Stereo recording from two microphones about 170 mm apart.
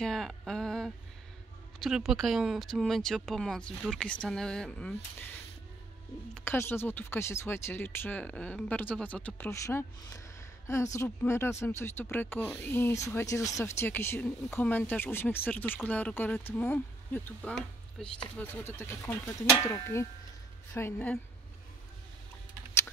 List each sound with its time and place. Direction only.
0.0 s a sound: centre (ahead or behind)
1.8 s speech: centre (ahead or behind)
6.3 s speech: 15° left (ahead or behind)